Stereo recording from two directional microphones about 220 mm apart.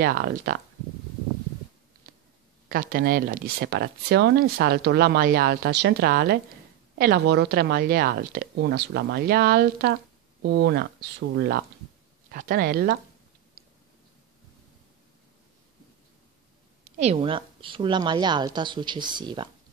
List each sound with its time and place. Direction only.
0.0 s speech: 45° right (ahead or behind)
2.7 s speech: 40° right (ahead or behind)
16.8 s a woman's voice: 35° right (ahead or behind)